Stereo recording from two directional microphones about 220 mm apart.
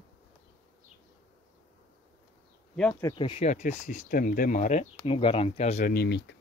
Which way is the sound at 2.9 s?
20° left (ahead or behind).